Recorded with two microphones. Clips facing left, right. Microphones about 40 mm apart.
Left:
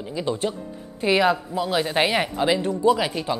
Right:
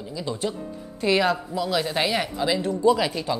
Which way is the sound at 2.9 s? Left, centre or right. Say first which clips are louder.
Even; left.